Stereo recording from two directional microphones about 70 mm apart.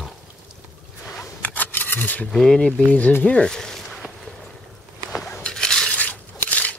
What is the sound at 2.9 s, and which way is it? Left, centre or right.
Speech, left.